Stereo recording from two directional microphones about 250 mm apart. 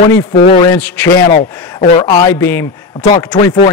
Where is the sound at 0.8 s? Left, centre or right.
Centre.